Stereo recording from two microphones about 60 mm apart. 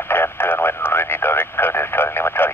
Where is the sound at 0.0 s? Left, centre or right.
Left.